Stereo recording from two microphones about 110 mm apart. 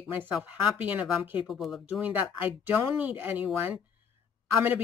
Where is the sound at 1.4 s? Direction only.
Centre (ahead or behind).